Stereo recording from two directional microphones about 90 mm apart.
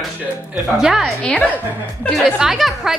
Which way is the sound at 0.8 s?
5° right (ahead or behind).